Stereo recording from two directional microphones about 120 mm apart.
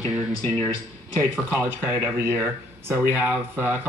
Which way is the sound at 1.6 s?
15° right (ahead or behind).